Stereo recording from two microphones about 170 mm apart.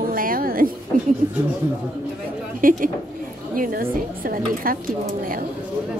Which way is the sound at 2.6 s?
55° right (ahead or behind).